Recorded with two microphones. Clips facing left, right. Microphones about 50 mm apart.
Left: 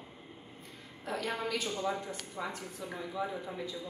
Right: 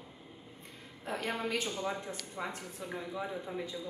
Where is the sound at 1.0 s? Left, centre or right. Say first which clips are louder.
Even; right.